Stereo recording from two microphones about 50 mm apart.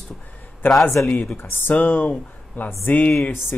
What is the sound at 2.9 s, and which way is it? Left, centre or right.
Speech, left.